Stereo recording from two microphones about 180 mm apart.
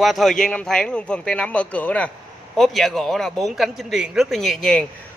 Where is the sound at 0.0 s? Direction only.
Centre (ahead or behind).